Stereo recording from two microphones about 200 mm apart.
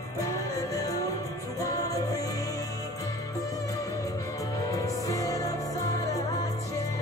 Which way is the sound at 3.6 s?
15° left (ahead or behind).